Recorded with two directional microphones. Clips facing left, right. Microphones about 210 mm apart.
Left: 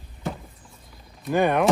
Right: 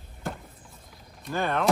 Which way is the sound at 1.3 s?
15° left (ahead or behind).